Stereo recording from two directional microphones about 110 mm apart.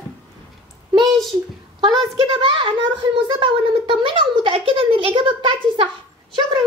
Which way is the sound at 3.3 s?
50° right (ahead or behind).